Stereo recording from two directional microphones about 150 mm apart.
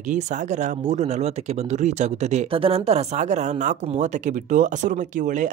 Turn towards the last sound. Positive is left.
turn(degrees=-60)  # may be behind; listen again after turning